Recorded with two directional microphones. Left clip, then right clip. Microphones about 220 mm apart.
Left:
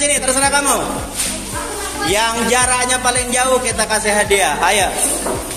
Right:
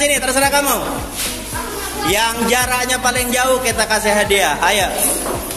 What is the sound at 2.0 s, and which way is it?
Speech, 10° right (ahead or behind).